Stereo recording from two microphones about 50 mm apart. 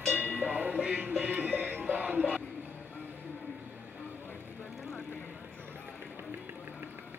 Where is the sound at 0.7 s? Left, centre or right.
Right.